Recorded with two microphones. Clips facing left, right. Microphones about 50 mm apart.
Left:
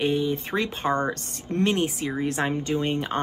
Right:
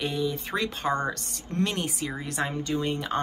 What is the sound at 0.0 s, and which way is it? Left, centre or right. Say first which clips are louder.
Speech: left 5 dB; left.